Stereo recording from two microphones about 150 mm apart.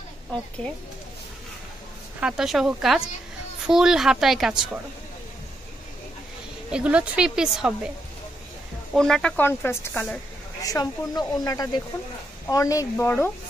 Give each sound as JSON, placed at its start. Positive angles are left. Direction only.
{"t": 2.1, "sound": "a woman's voice", "side_deg": -5}
{"t": 6.7, "sound": "a woman's voice", "side_deg": -10}
{"t": 8.9, "sound": "a woman's voice", "side_deg": 5}
{"t": 9.4, "sound": "speech", "side_deg": 15}
{"t": 10.6, "sound": "speech", "side_deg": 25}